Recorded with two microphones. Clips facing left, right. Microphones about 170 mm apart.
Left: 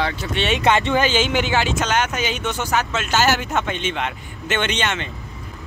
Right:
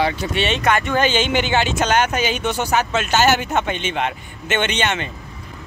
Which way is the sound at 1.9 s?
60° right (ahead or behind).